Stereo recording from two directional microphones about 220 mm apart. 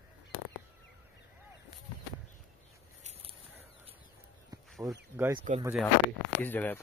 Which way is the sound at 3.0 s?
25° right (ahead or behind).